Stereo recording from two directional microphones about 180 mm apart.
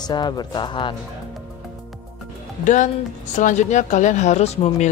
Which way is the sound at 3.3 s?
45° left (ahead or behind).